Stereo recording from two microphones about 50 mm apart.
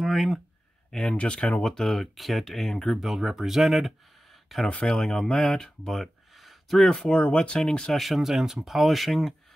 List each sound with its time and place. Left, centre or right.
0.0 s a sound: centre
1.0 s speech: left
1.6 s speech: centre
3.1 s speech: centre
4.6 s speech: left; by 6.9 s centre
6.9 s speech: left
7.9 s speech: centre